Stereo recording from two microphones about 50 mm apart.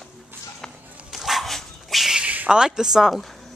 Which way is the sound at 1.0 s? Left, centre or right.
Centre.